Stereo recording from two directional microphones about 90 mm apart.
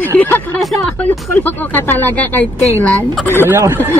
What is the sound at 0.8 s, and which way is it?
Speech, 20° left (ahead or behind).